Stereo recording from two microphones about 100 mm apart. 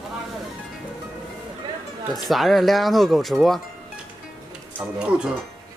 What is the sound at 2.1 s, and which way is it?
Speech, centre (ahead or behind).